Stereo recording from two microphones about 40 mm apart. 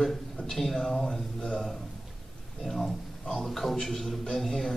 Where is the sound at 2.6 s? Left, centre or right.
Centre.